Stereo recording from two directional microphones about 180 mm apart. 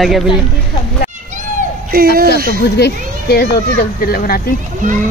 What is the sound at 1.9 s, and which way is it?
Speech, 60° right (ahead or behind).